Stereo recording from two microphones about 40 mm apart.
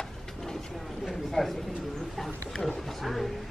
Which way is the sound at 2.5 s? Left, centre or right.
Centre.